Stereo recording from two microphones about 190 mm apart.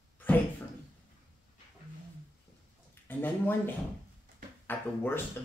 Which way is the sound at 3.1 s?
10° left (ahead or behind).